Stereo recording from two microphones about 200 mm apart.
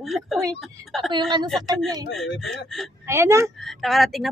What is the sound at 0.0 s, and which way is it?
Speech, centre (ahead or behind).